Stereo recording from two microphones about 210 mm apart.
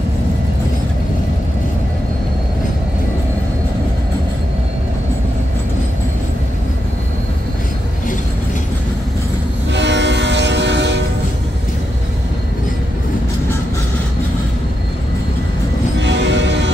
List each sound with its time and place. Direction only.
9.7 s train: 55° right (ahead or behind)
16.0 s music: 55° right (ahead or behind)